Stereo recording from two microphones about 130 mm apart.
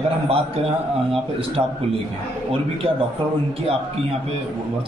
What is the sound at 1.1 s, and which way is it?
Speech, 45° right (ahead or behind).